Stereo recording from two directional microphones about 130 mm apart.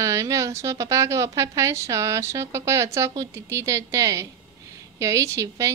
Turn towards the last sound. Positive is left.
turn(degrees=-25)  # may be behind; listen again after turning